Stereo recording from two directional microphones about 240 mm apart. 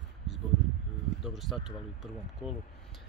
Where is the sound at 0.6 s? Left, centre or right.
Right.